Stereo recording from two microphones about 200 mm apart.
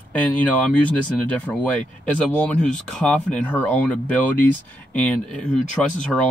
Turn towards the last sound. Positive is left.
turn(degrees=35)  # may be behind; listen again after turning